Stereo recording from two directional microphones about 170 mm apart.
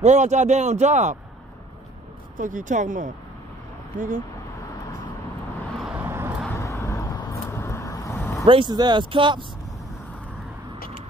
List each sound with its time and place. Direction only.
0.0 s a man's voice: 45° right (ahead or behind)
2.3 s a man's voice: 50° right (ahead or behind)
5.9 s vehicle: 10° right (ahead or behind)
6.4 s vehicle: 15° left (ahead or behind)
8.5 s speech: 30° right (ahead or behind)